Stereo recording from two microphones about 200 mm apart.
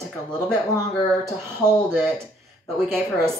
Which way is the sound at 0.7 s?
20° left (ahead or behind).